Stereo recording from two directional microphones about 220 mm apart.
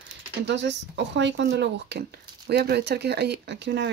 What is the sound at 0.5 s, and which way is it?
Speech, 55° right (ahead or behind).